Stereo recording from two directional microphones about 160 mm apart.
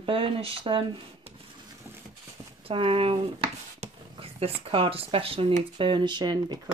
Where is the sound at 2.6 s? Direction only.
35° right (ahead or behind).